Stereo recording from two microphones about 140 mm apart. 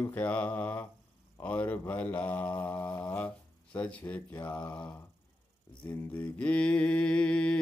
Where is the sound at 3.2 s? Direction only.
10° left (ahead or behind).